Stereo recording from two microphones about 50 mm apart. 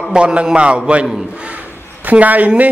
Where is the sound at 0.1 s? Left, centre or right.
Right.